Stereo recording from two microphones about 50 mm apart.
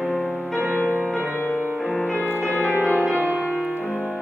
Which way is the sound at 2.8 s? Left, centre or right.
Right.